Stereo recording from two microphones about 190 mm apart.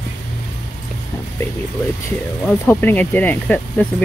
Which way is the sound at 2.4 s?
10° left (ahead or behind).